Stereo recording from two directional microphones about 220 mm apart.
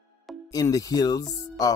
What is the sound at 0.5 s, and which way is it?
Speech, 15° left (ahead or behind).